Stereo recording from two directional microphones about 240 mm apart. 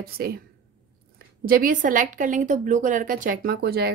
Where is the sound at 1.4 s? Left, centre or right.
Right.